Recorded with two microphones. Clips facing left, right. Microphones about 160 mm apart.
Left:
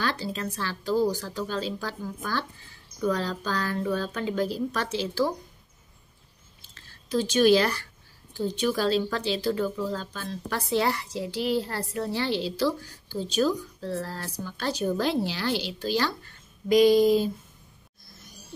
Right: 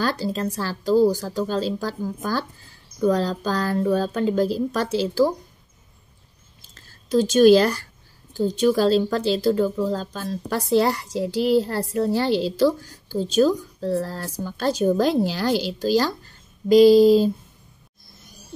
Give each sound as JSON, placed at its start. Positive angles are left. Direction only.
{"t": 0.0, "sound": "a woman's voice", "side_deg": -40}
{"t": 6.9, "sound": "a woman's voice", "side_deg": -45}